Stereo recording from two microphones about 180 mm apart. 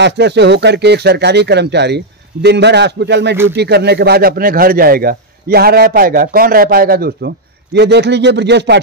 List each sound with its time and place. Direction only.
0.0 s speech: 70° right (ahead or behind)